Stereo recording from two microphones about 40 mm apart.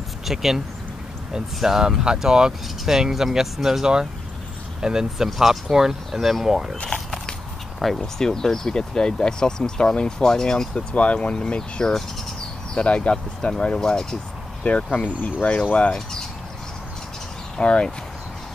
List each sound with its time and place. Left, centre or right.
0.2 s speech: centre
6.1 s speech: centre
6.4 s speech: centre
8.0 s speech: centre
11.0 s speech: left
14.6 s speech: left
15.4 s speech: left
15.9 s speech: centre
17.6 s speech: left